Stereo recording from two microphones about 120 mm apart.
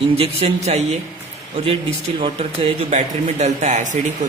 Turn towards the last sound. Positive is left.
turn(degrees=-90)